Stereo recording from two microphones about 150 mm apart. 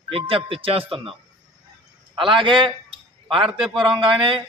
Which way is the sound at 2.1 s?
35° right (ahead or behind).